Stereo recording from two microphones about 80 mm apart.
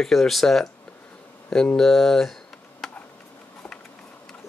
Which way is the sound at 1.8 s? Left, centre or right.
Centre.